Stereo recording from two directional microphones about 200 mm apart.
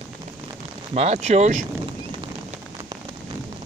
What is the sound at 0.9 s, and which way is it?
Speech, 35° right (ahead or behind).